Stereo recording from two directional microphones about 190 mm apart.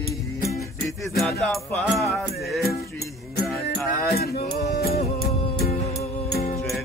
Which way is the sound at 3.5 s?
55° left (ahead or behind).